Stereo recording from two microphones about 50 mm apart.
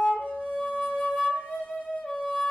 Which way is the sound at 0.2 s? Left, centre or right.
Left.